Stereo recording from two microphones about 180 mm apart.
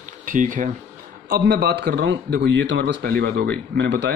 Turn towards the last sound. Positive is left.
turn(degrees=-75)  # may be behind; listen again after turning